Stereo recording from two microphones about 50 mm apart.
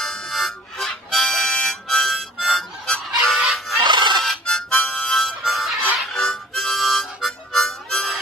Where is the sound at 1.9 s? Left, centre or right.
Centre.